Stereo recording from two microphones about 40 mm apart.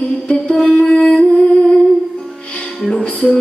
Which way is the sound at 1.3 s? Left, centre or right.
Left.